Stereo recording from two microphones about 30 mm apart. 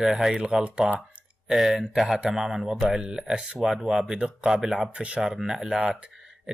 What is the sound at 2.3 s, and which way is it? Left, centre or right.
Speech, centre.